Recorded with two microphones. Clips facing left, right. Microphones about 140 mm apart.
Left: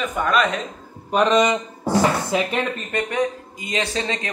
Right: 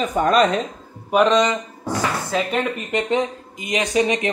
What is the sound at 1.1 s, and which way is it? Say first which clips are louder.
Speech: right 2 dB; 5° right (ahead or behind).